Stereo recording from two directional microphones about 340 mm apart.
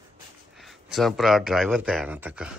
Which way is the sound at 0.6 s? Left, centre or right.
Centre.